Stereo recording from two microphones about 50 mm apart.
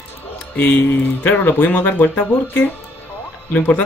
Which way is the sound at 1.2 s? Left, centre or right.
Left.